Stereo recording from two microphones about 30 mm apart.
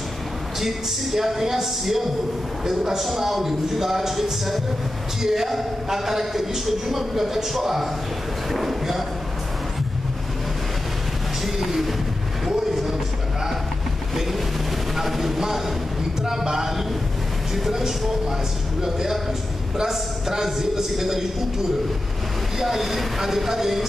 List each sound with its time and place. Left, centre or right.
0.6 s a man's voice: centre
8.5 s a sound: centre
11.4 s music: centre
15.0 s a man's voice: centre
22.6 s a man's voice: centre